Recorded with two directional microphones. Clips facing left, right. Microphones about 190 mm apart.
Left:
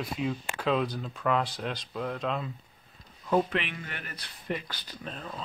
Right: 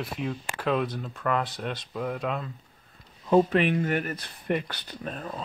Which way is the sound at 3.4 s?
40° right (ahead or behind).